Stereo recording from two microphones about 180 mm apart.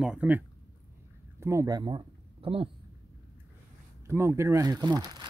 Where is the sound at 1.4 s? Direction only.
15° right (ahead or behind); by 2.7 s 30° right (ahead or behind).